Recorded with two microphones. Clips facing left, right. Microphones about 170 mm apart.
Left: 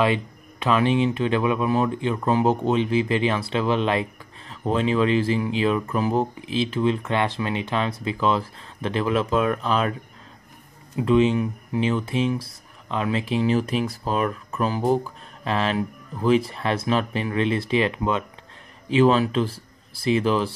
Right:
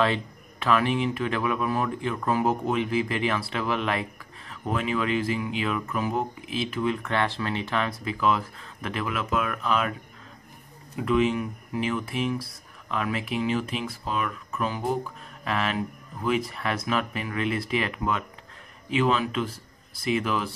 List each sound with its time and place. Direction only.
0.0 s speech: 20° left (ahead or behind)
11.0 s speech: 25° left (ahead or behind)